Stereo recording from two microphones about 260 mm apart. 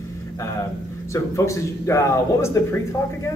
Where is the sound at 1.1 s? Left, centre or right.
Centre.